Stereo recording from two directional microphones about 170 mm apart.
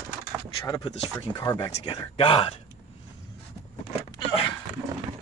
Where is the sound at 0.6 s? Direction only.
25° left (ahead or behind).